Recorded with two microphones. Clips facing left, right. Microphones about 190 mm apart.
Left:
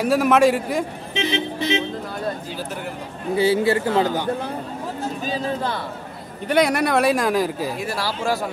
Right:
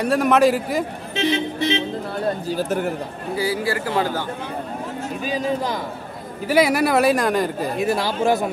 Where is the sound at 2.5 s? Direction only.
45° right (ahead or behind).